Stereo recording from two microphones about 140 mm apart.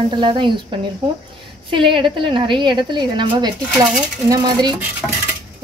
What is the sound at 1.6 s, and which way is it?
A woman's voice, 35° right (ahead or behind).